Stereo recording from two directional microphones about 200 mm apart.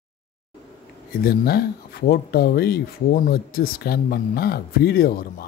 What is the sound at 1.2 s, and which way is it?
Speech, 50° left (ahead or behind).